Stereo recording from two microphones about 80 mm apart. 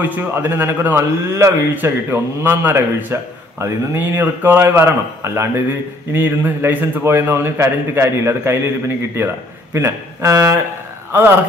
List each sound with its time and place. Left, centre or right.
0.0 s a man's voice: right
10.3 s speech: right
11.1 s speech: right